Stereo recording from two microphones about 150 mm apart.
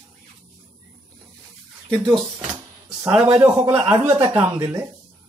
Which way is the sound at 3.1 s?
10° right (ahead or behind).